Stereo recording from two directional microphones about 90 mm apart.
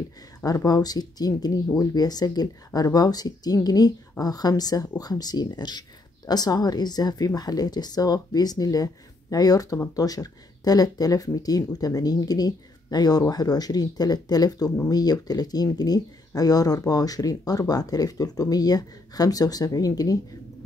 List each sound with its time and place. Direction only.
0.7 s speech: 45° left (ahead or behind)